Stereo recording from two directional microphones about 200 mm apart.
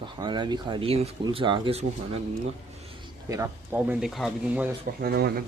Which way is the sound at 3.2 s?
15° right (ahead or behind).